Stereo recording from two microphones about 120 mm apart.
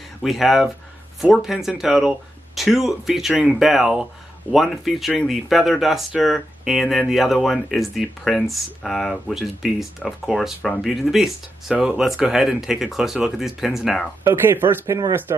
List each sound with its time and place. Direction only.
0.2 s speech: centre (ahead or behind)
14.2 s speech: 20° right (ahead or behind)